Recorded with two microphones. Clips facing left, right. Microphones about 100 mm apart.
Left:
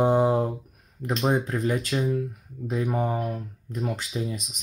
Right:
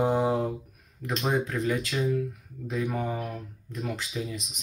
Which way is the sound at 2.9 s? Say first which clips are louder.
Left 4 dB; 25° left (ahead or behind).